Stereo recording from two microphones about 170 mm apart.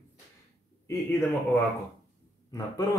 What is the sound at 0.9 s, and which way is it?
Speech, 15° left (ahead or behind).